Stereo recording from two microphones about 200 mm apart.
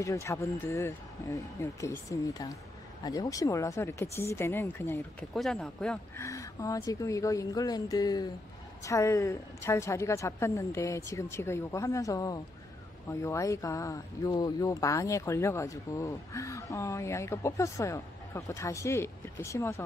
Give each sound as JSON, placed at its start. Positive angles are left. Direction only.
{"t": 0.0, "sound": "speech", "side_deg": 15}
{"t": 6.2, "sound": "speech", "side_deg": 15}